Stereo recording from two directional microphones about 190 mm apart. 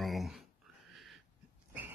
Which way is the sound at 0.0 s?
Centre (ahead or behind).